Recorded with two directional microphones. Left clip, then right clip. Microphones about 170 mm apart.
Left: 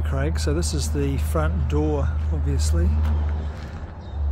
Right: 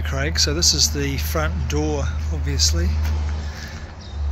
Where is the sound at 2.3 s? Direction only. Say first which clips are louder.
Even; 5° right (ahead or behind).